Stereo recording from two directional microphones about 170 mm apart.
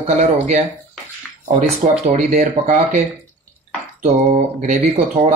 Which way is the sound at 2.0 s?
45° right (ahead or behind).